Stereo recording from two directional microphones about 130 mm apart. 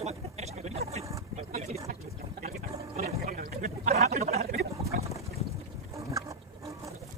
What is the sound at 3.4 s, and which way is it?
Gargling, 90° right.